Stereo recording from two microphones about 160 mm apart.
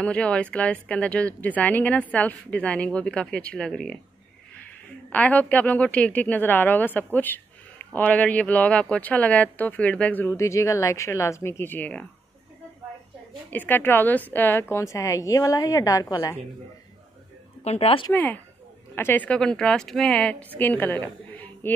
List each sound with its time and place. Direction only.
0.0 s a woman's voice: 5° left (ahead or behind)
5.1 s a woman's voice: 10° left (ahead or behind)
13.5 s a woman's voice: 10° left (ahead or behind)
17.6 s speech: 35° left (ahead or behind)
18.1 s a woman's voice: 10° left (ahead or behind)